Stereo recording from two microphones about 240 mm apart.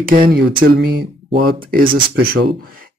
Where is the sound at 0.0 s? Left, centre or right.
Right.